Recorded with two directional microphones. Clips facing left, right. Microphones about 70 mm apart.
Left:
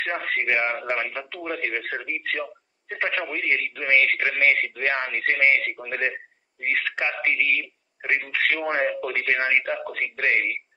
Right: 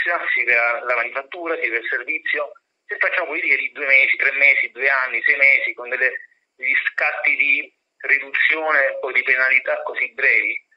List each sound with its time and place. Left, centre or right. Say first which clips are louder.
0.0 s speech: right 5 dB; right